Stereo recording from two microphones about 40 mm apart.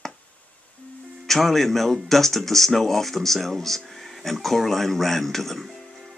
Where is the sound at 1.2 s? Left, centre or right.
Centre.